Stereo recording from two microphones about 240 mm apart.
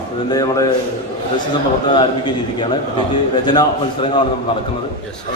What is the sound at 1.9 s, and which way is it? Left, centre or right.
A man's voice, centre.